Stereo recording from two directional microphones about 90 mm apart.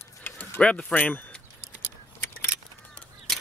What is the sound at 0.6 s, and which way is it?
Speech, 10° left (ahead or behind).